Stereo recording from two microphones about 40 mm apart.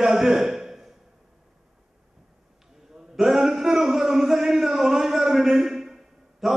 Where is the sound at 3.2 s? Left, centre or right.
Centre.